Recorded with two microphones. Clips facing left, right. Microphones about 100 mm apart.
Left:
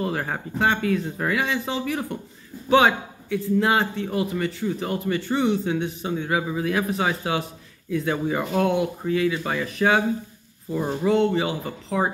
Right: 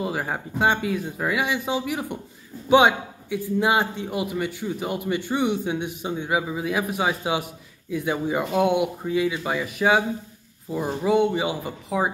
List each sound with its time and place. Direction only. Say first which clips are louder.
0.0 s a man's voice: left 1 dB; 10° right (ahead or behind)